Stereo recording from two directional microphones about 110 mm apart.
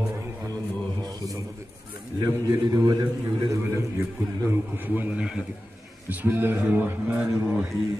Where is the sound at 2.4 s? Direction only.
35° right (ahead or behind).